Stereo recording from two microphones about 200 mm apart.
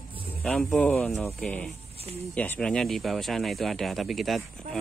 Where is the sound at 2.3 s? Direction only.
5° left (ahead or behind).